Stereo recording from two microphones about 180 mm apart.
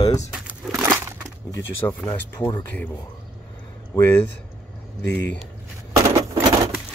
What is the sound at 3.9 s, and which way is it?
Speech, 15° left (ahead or behind).